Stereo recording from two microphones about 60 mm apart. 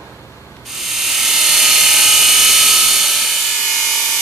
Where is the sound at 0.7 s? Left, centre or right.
Centre.